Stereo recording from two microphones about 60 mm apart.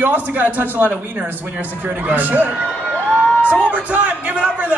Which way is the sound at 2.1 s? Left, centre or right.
Right.